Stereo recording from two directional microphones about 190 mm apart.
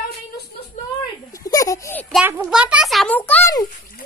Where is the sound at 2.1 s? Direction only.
5° right (ahead or behind); by 3.5 s 10° left (ahead or behind).